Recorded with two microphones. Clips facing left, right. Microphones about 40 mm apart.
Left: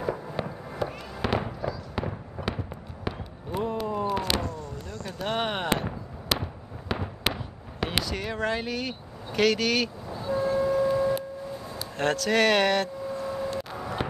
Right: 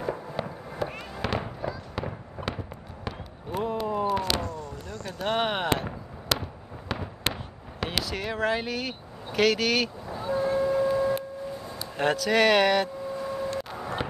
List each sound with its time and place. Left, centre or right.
0.0 s fireworks: centre
3.1 s basketball bounce: centre
4.2 s a sound: centre
5.2 s basketball bounce: centre
6.9 s fireworks: centre
8.0 s speech: centre
10.1 s vehicle: centre
10.6 s foghorn: centre
11.7 s speech: centre
13.3 s vehicle: centre